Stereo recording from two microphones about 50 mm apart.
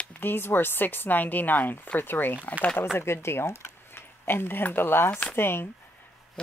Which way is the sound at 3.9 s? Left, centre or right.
Left.